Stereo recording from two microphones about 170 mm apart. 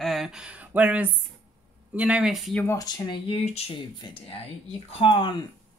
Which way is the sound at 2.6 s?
15° left (ahead or behind).